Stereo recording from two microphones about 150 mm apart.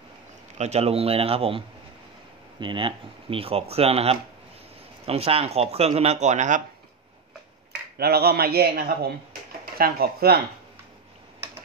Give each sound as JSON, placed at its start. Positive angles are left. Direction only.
{"t": 0.6, "sound": "speech", "side_deg": -45}
{"t": 2.6, "sound": "speech", "side_deg": -35}
{"t": 8.0, "sound": "a man's voice", "side_deg": -90}